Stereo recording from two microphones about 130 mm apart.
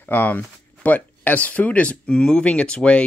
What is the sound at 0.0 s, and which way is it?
Speech, 15° left (ahead or behind).